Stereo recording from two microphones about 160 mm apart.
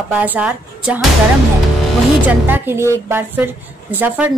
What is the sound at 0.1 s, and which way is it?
Speech, 10° right (ahead or behind).